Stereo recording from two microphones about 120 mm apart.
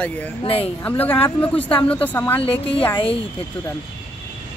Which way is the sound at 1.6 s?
50° left (ahead or behind).